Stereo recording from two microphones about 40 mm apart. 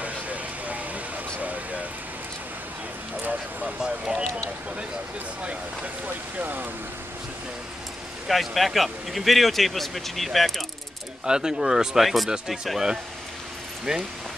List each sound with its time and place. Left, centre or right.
0.0 s a sound: right
3.8 s a sound: centre
6.3 s speech: right
8.3 s speech: centre
11.2 s speech: centre
13.9 s speech: centre